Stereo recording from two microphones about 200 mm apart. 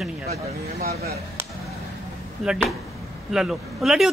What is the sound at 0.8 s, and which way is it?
Speech, 50° right (ahead or behind).